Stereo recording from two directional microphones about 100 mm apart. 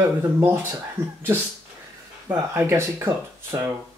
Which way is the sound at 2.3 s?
25° right (ahead or behind).